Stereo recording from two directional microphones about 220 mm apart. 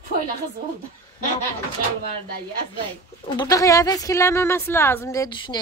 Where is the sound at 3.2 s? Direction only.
20° left (ahead or behind).